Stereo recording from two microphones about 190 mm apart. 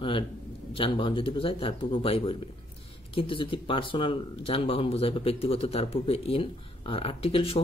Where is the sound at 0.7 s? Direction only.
25° left (ahead or behind).